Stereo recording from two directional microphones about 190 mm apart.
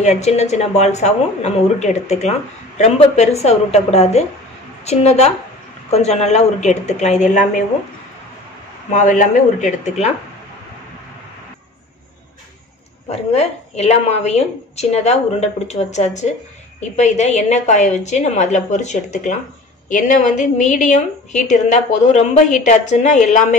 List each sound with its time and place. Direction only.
0.0 s a woman's voice: 35° left (ahead or behind)
8.9 s a woman's voice: 40° left (ahead or behind)
13.1 s a woman's voice: 35° left (ahead or behind)